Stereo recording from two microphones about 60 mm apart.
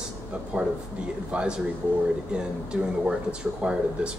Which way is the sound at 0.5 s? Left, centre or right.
Right.